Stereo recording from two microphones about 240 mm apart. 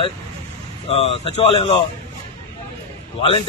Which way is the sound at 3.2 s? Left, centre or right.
Left.